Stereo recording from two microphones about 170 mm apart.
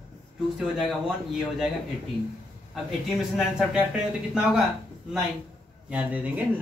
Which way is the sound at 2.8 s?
Centre (ahead or behind).